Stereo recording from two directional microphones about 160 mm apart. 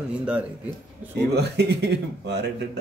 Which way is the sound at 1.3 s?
90° right.